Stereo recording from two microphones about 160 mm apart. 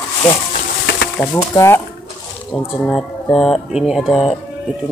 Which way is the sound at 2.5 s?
5° left (ahead or behind).